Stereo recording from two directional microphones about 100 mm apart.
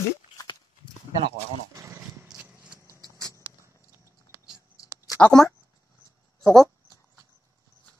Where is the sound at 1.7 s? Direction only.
30° right (ahead or behind).